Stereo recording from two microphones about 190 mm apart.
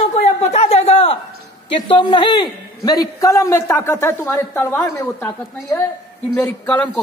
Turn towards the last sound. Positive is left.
turn(degrees=5)  # may be behind; listen again after turning